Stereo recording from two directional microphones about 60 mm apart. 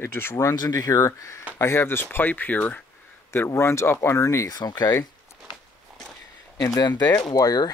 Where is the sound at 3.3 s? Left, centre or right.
Left.